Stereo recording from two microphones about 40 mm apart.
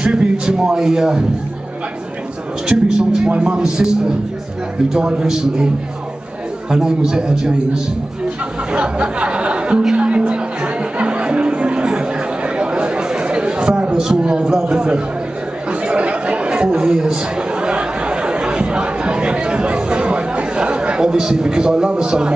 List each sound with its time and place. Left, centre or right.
0.0 s a man's voice: centre
2.7 s a man's voice: right
3.3 s a man's voice: right
3.5 s a man's voice: centre
4.9 s a man's voice: centre
6.7 s a man's voice: centre
8.7 s speech: right
9.9 s music: right
11.9 s chatter: right
14.1 s a sound: right
14.5 s a man's voice: right
15.7 s chatter: right